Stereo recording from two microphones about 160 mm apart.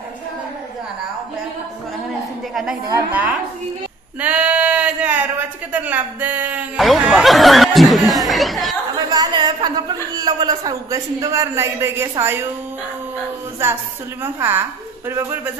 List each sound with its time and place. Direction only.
2.5 s a woman's voice: centre (ahead or behind)
4.2 s a sound: 10° right (ahead or behind)
5.7 s a man's voice: 10° right (ahead or behind)
6.9 s chatter: centre (ahead or behind)
9.1 s a sound: 25° right (ahead or behind)
14.2 s a man's voice: 15° right (ahead or behind)